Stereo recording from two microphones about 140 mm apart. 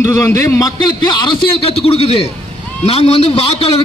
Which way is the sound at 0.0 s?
20° left (ahead or behind).